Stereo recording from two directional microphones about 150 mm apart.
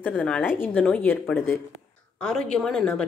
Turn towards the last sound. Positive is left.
turn(degrees=5)  # may be behind; listen again after turning